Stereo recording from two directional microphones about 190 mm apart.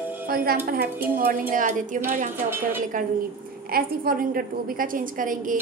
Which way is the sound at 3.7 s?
50° right (ahead or behind).